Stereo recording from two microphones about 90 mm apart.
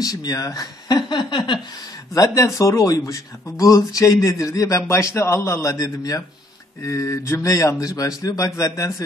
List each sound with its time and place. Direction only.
0.0 s speech: 40° left (ahead or behind); by 1.6 s 60° left (ahead or behind)
2.1 s speech: 40° left (ahead or behind)